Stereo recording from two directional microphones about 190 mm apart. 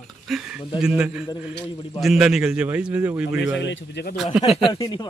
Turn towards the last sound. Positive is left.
turn(degrees=25)  # may be behind; listen again after turning